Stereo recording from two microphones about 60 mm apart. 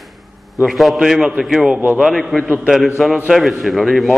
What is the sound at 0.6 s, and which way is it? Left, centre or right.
A man's voice, centre.